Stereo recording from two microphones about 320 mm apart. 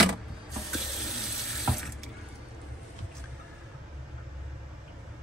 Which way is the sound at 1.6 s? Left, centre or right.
Centre.